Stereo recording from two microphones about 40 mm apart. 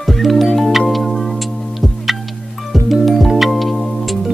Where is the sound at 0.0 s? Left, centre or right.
Centre.